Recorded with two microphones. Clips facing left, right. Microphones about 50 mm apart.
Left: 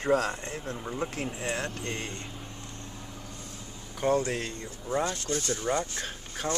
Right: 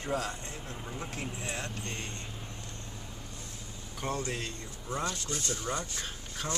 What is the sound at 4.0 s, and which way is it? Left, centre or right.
Speech, left.